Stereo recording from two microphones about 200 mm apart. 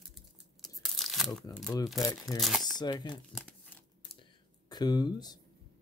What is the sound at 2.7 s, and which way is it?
Speech, 20° left (ahead or behind).